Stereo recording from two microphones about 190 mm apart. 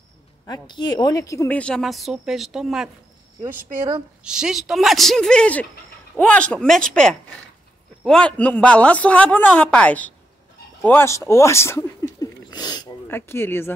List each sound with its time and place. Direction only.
0.5 s a woman's voice: 25° left (ahead or behind)
1.6 s speech: 5° left (ahead or behind)
4.2 s a woman's voice: 5° right (ahead or behind); by 12.1 s 15° left (ahead or behind)
12.2 s a sound: 20° left (ahead or behind)